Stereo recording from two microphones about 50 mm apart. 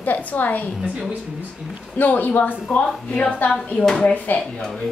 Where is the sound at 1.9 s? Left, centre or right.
Left.